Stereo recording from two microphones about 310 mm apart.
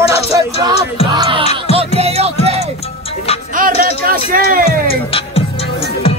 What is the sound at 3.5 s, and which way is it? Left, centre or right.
Music, right.